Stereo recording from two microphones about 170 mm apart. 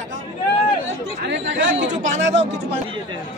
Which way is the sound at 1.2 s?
90° right.